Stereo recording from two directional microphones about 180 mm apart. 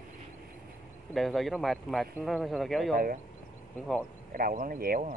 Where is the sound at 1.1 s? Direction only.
Centre (ahead or behind).